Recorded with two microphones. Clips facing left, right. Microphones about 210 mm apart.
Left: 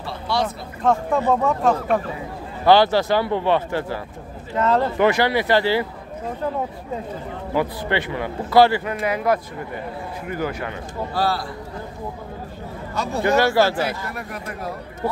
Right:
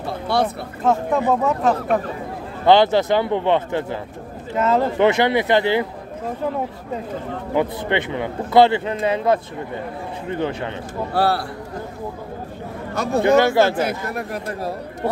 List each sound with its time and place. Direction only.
0.0 s speech: 55° right (ahead or behind)
0.8 s speech: 5° right (ahead or behind)
2.6 s a man's voice: 20° right (ahead or behind)
4.6 s speech: 5° right (ahead or behind)
4.9 s a man's voice: 20° right (ahead or behind)
7.5 s a man's voice: 20° right (ahead or behind)
11.1 s a man's voice: 65° right (ahead or behind)
13.2 s a man's voice: 20° right (ahead or behind)
14.1 s speech: 35° right (ahead or behind)